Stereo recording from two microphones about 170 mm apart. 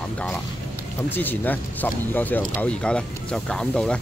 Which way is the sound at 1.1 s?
10° left (ahead or behind).